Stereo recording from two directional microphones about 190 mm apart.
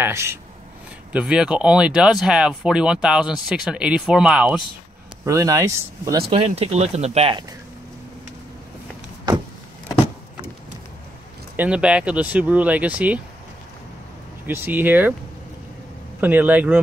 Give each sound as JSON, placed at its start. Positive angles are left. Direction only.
{"t": 0.0, "sound": "speech", "side_deg": -15}
{"t": 5.2, "sound": "speech", "side_deg": -15}
{"t": 6.3, "sound": "speech", "side_deg": -30}
{"t": 11.5, "sound": "speech", "side_deg": -5}
{"t": 14.4, "sound": "speech", "side_deg": -10}
{"t": 16.2, "sound": "speech", "side_deg": -10}